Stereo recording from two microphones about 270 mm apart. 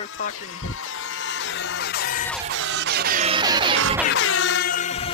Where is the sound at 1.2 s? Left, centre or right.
Left.